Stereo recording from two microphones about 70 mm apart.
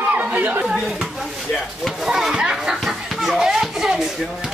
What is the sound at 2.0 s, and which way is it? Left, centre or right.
Children playing, centre.